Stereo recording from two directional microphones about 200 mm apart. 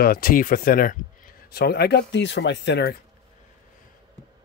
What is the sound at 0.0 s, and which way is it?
Speech, 45° left (ahead or behind).